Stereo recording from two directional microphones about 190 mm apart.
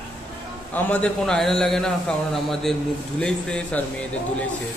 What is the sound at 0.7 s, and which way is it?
A man's voice, 10° left (ahead or behind).